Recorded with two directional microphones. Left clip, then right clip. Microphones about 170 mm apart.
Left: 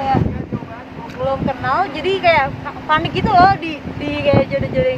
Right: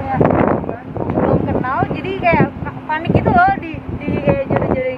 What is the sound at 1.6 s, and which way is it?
Speech, 20° left (ahead or behind).